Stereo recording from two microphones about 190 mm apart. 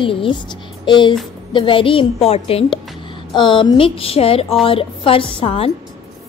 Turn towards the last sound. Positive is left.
turn(degrees=30)  # may be behind; listen again after turning